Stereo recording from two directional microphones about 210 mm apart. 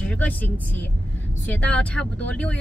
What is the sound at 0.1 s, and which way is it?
Speech, 5° left (ahead or behind).